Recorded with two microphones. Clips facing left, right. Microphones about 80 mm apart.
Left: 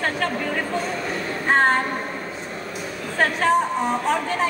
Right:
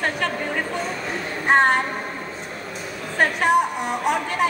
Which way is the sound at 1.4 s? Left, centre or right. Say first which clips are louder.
Right 1 dB; centre.